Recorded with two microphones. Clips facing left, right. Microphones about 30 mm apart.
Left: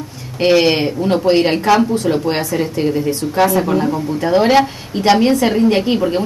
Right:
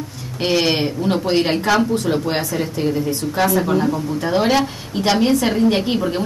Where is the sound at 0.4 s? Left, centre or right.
Centre.